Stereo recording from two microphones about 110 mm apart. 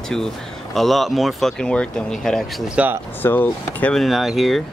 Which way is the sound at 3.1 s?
20° left (ahead or behind).